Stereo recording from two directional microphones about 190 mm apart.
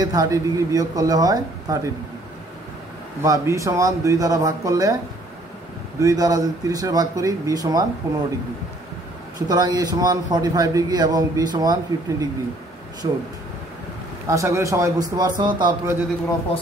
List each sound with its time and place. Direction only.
0.0 s a man's voice: 20° right (ahead or behind)
3.2 s speech: 15° right (ahead or behind)
5.9 s a man's voice: 20° right (ahead or behind)
9.5 s a man's voice: 20° right (ahead or behind)
14.2 s speech: 15° right (ahead or behind)